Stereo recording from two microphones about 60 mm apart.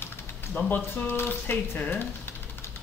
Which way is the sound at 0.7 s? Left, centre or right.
Left.